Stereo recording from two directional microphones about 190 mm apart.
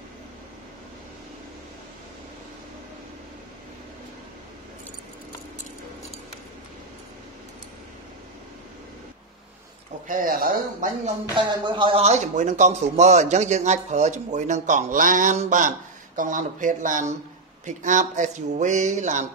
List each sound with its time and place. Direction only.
10.0 s speech: 45° right (ahead or behind)
11.3 s a man's voice: 25° right (ahead or behind)